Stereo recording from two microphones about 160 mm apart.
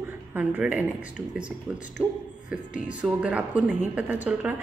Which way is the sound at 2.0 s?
5° right (ahead or behind).